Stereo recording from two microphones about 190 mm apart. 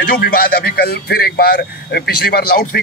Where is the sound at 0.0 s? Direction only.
50° left (ahead or behind).